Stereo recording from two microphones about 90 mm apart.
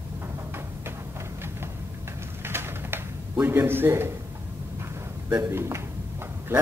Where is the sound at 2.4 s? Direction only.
25° right (ahead or behind).